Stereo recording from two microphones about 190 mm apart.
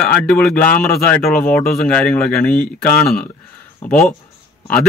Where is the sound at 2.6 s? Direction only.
45° left (ahead or behind).